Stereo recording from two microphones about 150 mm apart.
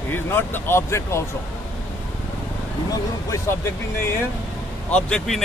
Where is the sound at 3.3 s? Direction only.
15° left (ahead or behind).